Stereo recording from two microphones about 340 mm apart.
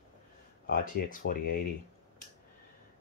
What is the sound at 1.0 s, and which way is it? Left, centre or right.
Speech, left.